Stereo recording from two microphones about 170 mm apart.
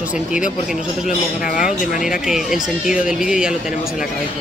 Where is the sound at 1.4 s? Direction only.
50° left (ahead or behind).